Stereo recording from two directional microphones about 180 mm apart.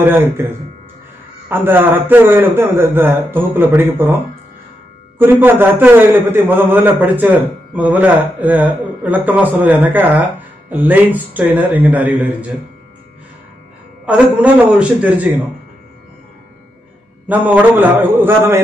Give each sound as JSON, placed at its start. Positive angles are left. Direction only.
{"t": 0.0, "sound": "a man's voice", "side_deg": -10}
{"t": 5.2, "sound": "a man's voice", "side_deg": -10}
{"t": 14.0, "sound": "a man's voice", "side_deg": -5}
{"t": 17.3, "sound": "a man's voice", "side_deg": -10}